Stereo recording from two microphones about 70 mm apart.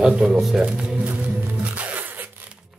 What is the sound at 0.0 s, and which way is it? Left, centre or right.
Speech, centre.